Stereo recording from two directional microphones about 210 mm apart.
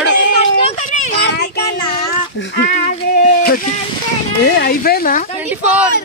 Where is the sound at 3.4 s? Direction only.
45° left (ahead or behind).